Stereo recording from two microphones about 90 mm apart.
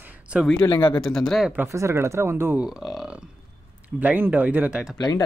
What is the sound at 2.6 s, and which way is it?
Speech, 5° right (ahead or behind).